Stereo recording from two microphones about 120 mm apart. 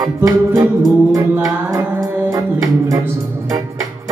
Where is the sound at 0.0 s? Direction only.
25° right (ahead or behind).